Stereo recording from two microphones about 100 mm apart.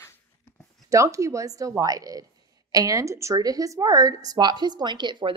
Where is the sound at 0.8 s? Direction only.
30° right (ahead or behind).